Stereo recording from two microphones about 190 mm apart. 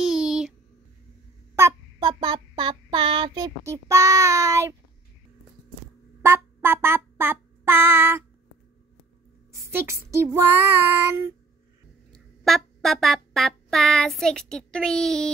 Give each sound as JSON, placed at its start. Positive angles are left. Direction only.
{"t": 0.0, "sound": "a sound", "side_deg": -5}
{"t": 1.5, "sound": "child singing", "side_deg": -15}
{"t": 6.2, "sound": "music", "side_deg": -15}
{"t": 9.7, "sound": "child singing", "side_deg": -15}
{"t": 12.4, "sound": "music", "side_deg": 0}